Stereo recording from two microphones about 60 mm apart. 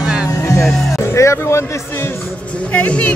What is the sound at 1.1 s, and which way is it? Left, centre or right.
Speech, left.